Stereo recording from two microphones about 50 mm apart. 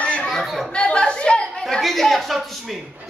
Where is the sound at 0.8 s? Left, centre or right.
Left.